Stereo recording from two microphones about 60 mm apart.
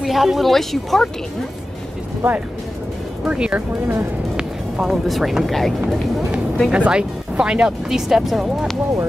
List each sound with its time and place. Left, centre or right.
0.0 s a woman's voice: centre
3.3 s speech: centre
6.7 s speech: centre